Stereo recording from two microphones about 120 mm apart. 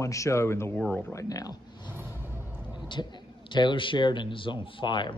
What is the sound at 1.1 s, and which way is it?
Speech, 30° left (ahead or behind).